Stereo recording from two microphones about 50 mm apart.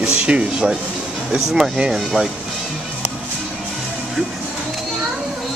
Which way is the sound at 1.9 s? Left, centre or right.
Centre.